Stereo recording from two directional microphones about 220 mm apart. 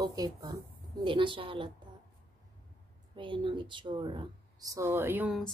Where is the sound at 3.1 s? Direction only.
20° right (ahead or behind).